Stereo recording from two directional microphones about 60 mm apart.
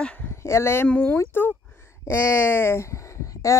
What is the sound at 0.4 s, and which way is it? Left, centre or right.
Speech, left.